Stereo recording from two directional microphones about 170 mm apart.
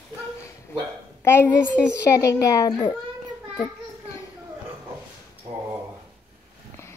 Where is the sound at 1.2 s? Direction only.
15° left (ahead or behind).